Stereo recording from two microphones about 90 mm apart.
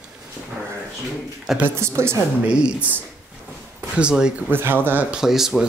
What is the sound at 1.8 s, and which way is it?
Speech, 30° right (ahead or behind).